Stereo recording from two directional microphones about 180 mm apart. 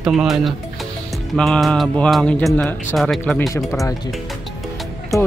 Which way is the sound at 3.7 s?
15° left (ahead or behind).